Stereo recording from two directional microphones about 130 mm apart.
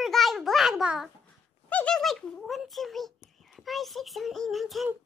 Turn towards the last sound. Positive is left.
turn(degrees=0)  # may be behind; listen again after turning